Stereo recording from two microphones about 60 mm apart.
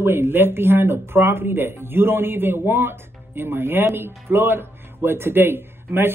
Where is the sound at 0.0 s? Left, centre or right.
Right.